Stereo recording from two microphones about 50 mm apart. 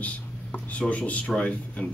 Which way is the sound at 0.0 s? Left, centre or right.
Left.